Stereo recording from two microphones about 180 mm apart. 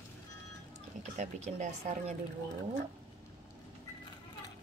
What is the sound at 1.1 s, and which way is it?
A woman's voice, 40° right (ahead or behind).